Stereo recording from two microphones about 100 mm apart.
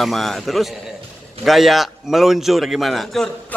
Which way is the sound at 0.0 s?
Centre (ahead or behind).